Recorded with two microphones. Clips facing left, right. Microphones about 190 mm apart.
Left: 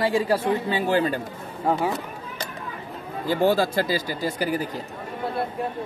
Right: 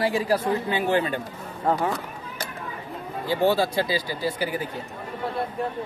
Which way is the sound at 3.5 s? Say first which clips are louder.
Left 1 dB; 45° left (ahead or behind).